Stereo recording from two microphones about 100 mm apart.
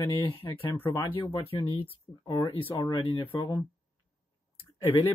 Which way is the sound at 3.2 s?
50° left (ahead or behind).